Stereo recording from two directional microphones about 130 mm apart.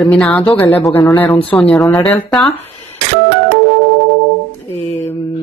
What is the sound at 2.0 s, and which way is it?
Speech, 5° left (ahead or behind).